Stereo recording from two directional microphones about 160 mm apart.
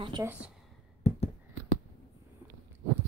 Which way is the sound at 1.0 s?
40° left (ahead or behind).